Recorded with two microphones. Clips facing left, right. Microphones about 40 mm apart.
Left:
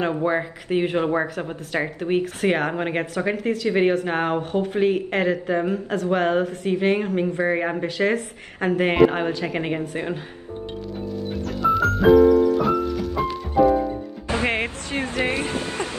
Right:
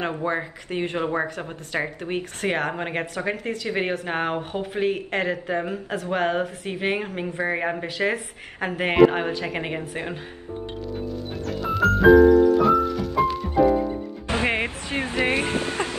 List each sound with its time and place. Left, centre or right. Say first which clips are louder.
0.0 s speech: left 4 dB; centre
11.1 s music: left 2 dB; centre
14.2 s music: left 1 dB; right
15.0 s speech: right 1 dB; right